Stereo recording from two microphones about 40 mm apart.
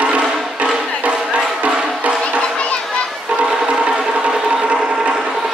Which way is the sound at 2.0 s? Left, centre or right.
Right.